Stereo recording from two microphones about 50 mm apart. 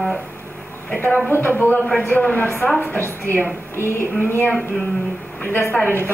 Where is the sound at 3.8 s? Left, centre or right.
Left.